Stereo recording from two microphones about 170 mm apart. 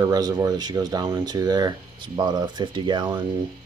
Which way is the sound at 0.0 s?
20° right (ahead or behind).